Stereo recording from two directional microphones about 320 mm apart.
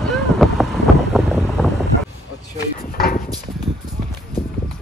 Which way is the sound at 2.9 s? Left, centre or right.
Left.